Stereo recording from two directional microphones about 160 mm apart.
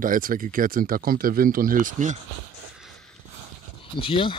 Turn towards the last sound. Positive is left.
turn(degrees=35)  # may be behind; listen again after turning